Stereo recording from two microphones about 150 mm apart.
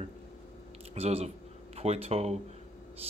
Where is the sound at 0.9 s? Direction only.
45° right (ahead or behind).